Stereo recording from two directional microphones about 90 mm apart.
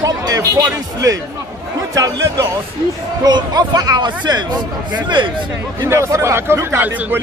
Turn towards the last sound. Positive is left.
turn(degrees=-25)  # may be behind; listen again after turning